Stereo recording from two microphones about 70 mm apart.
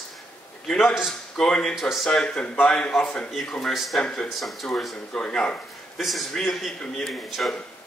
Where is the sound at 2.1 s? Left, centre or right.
Centre.